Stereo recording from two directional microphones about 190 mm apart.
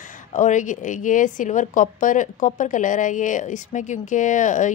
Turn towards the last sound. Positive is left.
turn(degrees=40)  # may be behind; listen again after turning